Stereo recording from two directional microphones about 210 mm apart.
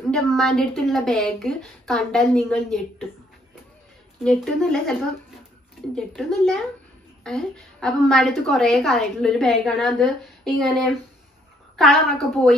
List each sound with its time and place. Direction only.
0.1 s a woman's voice: centre (ahead or behind)
4.2 s a woman's voice: centre (ahead or behind)
5.9 s a woman's voice: centre (ahead or behind)